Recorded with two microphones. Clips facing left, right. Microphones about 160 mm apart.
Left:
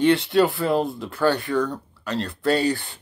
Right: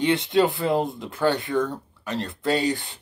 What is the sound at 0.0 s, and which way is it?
Speech, 20° right (ahead or behind).